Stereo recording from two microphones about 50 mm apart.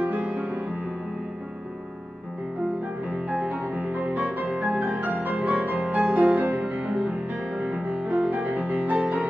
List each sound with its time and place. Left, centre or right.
0.0 s music: right
3.3 s music: right